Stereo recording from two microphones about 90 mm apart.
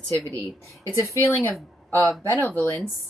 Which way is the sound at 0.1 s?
40° right (ahead or behind).